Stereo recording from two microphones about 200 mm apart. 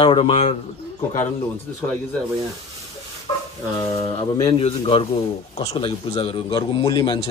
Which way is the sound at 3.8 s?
20° left (ahead or behind).